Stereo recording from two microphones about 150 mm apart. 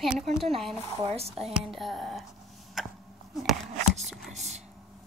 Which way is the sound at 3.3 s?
Centre (ahead or behind).